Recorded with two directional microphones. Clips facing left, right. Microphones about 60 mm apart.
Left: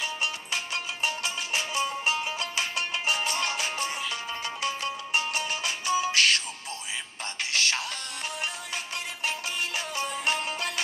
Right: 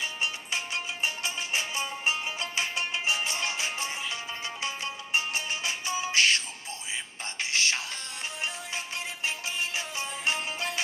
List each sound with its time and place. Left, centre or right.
1.0 s music: right
7.5 s music: right
9.8 s music: centre